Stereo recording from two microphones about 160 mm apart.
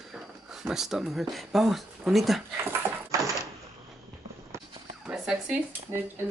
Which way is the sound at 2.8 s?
15° right (ahead or behind).